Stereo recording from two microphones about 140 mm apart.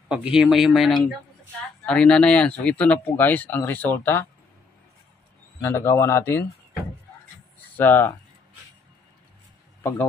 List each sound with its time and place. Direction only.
0.1 s speech: 5° right (ahead or behind); by 4.3 s 15° left (ahead or behind)
5.6 s speech: 15° left (ahead or behind)
7.7 s speech: 15° left (ahead or behind)